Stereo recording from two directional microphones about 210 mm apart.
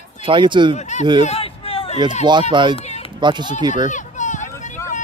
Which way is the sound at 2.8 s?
30° left (ahead or behind).